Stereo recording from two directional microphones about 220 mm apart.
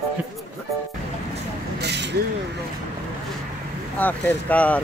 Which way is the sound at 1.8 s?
50° right (ahead or behind).